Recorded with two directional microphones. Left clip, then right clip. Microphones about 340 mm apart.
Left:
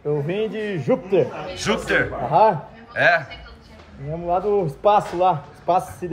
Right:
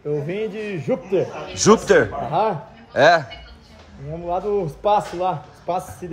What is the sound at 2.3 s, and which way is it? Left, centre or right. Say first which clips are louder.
Speech: left 7 dB; centre.